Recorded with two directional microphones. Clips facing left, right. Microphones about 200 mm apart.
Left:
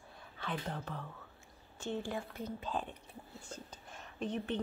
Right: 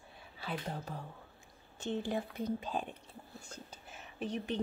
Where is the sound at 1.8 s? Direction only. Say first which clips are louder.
Right 3 dB; 20° right (ahead or behind).